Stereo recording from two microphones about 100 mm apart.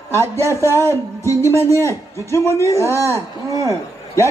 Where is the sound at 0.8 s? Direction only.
30° left (ahead or behind).